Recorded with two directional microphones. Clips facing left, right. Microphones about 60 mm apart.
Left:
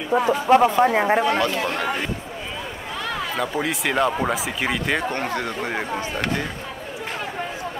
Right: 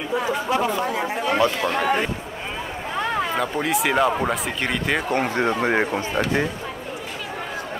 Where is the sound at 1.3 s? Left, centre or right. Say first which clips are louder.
Right 2 dB; centre.